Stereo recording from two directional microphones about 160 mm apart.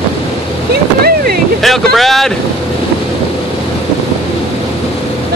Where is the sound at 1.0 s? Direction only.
70° right (ahead or behind).